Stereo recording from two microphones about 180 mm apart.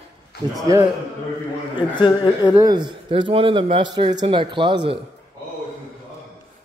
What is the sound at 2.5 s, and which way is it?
A man's voice, 20° right (ahead or behind).